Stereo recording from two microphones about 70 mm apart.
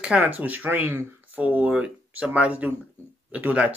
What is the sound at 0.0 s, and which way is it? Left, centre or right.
Speech, centre.